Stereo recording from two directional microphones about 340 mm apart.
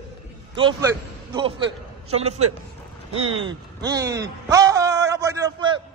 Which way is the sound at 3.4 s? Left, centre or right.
Centre.